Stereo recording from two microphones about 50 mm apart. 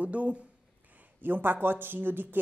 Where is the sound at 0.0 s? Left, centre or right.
Right.